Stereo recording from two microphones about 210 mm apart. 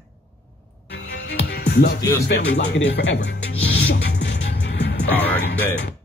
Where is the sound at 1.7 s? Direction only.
50° left (ahead or behind).